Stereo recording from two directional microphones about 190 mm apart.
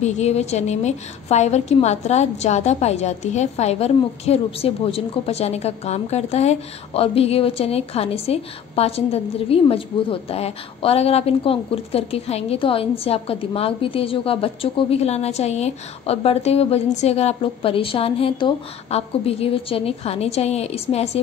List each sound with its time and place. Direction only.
0.0 s a woman's voice: 35° left (ahead or behind)